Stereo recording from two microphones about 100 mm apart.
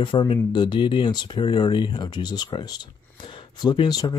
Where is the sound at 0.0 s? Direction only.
55° left (ahead or behind).